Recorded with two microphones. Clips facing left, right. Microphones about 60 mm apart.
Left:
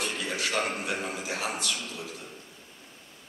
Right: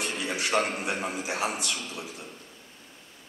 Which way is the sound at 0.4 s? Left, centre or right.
Centre.